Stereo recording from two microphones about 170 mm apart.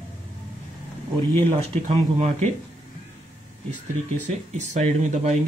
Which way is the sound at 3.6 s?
45° right (ahead or behind).